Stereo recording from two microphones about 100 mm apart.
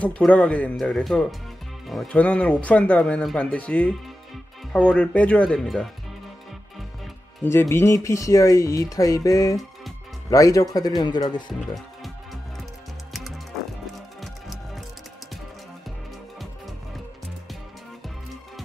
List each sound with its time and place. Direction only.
0.3 s speech: 15° left (ahead or behind)
7.7 s speech: 30° left (ahead or behind); by 11.5 s 45° left (ahead or behind)